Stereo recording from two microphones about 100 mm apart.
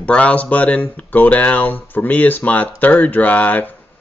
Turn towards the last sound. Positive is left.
turn(degrees=15)  # may be behind; listen again after turning